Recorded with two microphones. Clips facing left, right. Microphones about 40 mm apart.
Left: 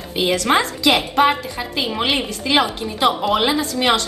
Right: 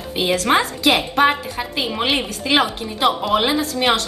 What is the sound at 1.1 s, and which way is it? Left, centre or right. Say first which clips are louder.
Speech: even; centre.